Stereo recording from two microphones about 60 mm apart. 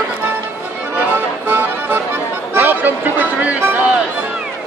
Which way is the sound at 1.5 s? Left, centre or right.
Right.